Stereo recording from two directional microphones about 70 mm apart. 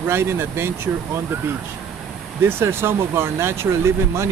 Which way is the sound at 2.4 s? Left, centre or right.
Right.